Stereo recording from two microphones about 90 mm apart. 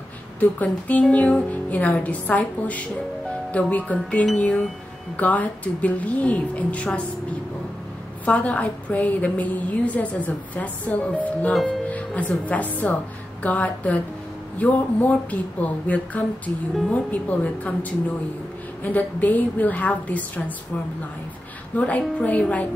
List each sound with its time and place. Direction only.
0.4 s speech: 15° left (ahead or behind)
8.3 s speech: 15° left (ahead or behind)
21.7 s speech: 15° left (ahead or behind)